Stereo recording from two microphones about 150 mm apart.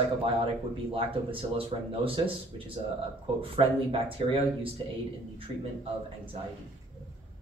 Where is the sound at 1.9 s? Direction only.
40° right (ahead or behind).